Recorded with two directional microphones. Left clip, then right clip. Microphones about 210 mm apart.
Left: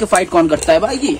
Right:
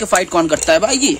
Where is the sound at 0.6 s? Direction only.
45° right (ahead or behind).